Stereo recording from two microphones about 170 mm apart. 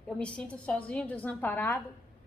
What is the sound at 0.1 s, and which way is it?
A woman's voice, 5° left (ahead or behind).